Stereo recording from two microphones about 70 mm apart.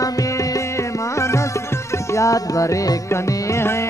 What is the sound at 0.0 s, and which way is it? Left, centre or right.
Music, left.